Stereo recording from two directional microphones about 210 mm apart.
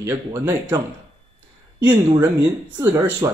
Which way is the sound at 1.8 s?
15° right (ahead or behind).